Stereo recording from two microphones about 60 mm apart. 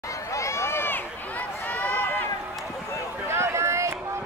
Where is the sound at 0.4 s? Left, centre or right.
Left.